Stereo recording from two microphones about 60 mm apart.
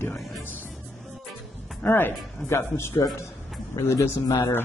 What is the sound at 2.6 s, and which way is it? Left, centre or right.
Speech, left.